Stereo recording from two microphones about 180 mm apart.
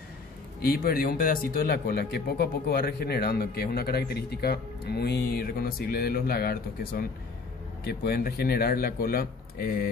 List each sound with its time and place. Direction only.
0.6 s speech: 55° left (ahead or behind)